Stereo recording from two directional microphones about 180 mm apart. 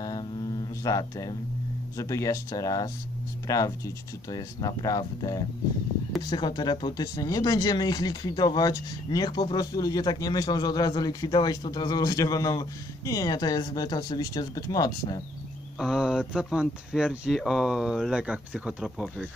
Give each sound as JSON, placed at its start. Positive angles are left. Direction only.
{"t": 0.8, "sound": "speech", "side_deg": 20}
{"t": 15.8, "sound": "speech", "side_deg": 0}